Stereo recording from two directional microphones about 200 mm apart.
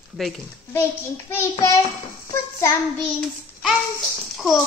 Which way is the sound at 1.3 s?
15° left (ahead or behind).